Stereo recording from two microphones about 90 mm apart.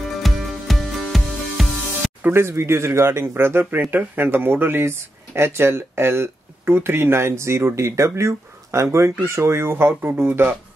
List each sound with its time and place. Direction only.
0.2 s music: centre (ahead or behind)
2.2 s speech: 25° right (ahead or behind)